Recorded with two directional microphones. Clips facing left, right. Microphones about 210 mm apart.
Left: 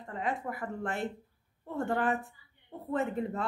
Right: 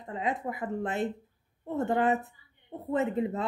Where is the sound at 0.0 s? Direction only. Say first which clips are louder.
Right 3 dB; 20° right (ahead or behind).